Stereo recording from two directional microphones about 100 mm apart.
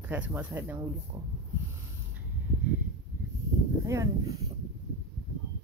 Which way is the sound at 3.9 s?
30° right (ahead or behind).